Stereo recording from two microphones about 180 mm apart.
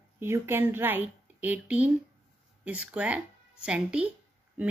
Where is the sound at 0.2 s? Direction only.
15° right (ahead or behind).